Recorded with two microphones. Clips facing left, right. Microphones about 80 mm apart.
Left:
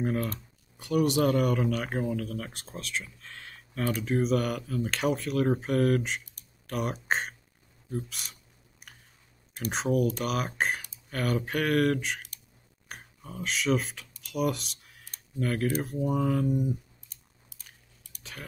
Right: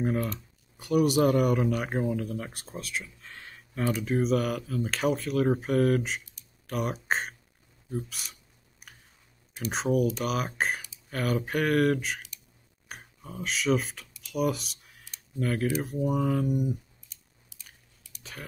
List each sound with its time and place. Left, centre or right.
0.0 s speech: centre
9.7 s speech: centre
14.2 s computer keyboard: centre
15.3 s speech: centre
17.1 s a sound: left